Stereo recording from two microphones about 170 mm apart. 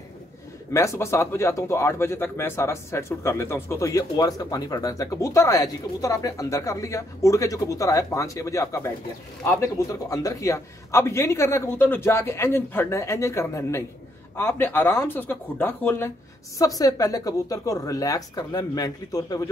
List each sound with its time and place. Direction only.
0.7 s a man's voice: 15° left (ahead or behind)